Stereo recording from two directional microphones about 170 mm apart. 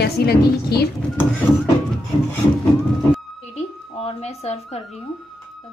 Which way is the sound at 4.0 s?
40° left (ahead or behind).